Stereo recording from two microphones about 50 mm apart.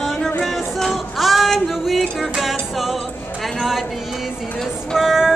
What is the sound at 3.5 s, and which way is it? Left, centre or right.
Speech, centre.